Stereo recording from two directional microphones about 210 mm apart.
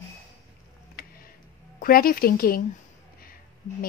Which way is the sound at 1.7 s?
45° left (ahead or behind).